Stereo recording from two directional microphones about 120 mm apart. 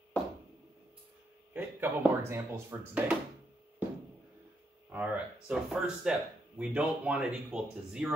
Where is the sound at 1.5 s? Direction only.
15° right (ahead or behind).